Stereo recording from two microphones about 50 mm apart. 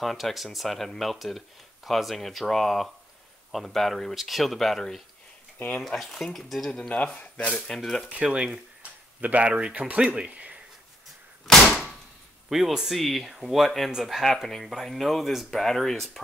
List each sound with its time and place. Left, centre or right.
0.0 s speech: centre
6.7 s speech: left
8.0 s speech: right
11.4 s door: centre
12.4 s speech: centre